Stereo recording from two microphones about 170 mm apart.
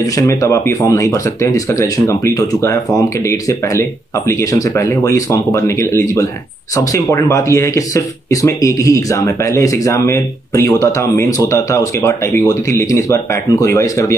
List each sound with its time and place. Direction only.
0.0 s speech: 20° left (ahead or behind)